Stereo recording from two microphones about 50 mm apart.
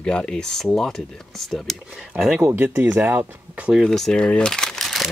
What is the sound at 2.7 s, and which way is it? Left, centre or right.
Speech, right.